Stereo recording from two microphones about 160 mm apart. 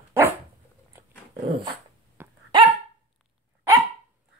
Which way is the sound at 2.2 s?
15° right (ahead or behind).